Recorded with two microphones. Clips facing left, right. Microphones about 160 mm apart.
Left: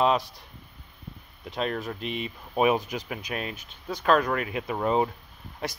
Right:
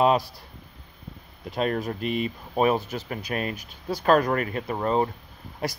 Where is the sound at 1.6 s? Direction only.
40° right (ahead or behind).